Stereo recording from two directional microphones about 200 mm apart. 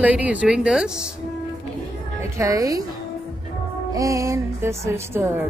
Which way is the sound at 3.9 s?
15° right (ahead or behind).